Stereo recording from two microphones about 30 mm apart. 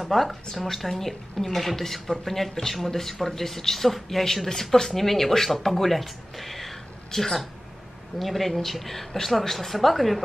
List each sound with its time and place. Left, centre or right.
0.1 s a woman's voice: centre
7.1 s speech: centre
8.2 s a woman's voice: centre